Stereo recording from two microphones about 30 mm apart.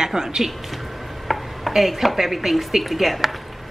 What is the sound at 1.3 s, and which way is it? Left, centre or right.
Speech, centre.